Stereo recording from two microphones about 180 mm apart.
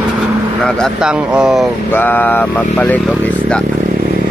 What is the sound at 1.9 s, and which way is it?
Speech, 10° left (ahead or behind).